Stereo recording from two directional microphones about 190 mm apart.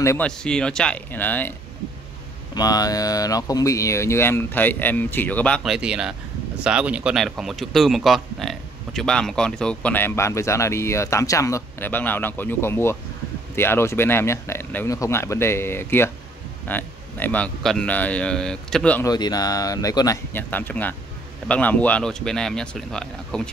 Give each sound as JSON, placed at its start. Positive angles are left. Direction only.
{"t": 0.0, "sound": "speech", "side_deg": 15}
{"t": 0.4, "sound": "speech", "side_deg": 5}
{"t": 2.5, "sound": "speech", "side_deg": 20}
{"t": 19.0, "sound": "speech", "side_deg": 20}